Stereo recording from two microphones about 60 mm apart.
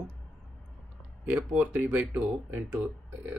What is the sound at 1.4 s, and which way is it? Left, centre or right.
Speech, right.